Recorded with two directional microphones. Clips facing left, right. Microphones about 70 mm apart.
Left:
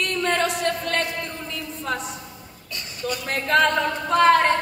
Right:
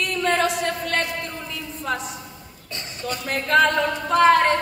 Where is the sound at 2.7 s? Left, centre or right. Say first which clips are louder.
Left 1 dB; right.